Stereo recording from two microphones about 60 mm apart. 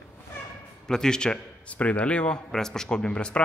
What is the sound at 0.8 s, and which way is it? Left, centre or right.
A man's voice, centre.